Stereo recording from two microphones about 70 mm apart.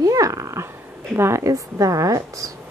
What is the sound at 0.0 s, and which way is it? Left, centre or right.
Dog, right.